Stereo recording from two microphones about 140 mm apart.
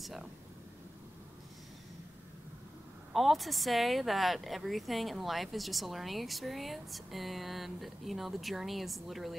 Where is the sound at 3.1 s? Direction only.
Centre (ahead or behind).